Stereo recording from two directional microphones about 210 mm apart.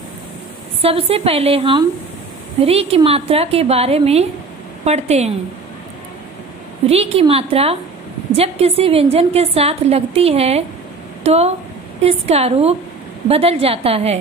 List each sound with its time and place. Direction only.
0.8 s a woman's voice: 30° right (ahead or behind)
6.9 s a woman's voice: 30° right (ahead or behind)